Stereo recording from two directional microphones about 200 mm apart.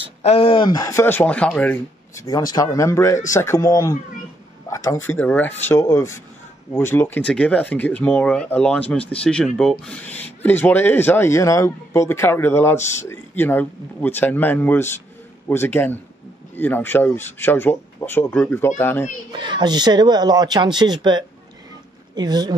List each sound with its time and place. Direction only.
0.2 s speech: 30° left (ahead or behind)
0.7 s speech: 15° left (ahead or behind)
12.7 s speech: 35° left (ahead or behind)
13.0 s speech: 10° left (ahead or behind)
19.3 s speech: 20° right (ahead or behind)